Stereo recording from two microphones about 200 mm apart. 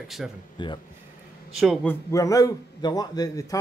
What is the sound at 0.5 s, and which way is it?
Speech, 25° left (ahead or behind).